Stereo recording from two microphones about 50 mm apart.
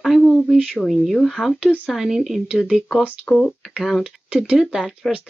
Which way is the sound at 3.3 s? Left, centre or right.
Centre.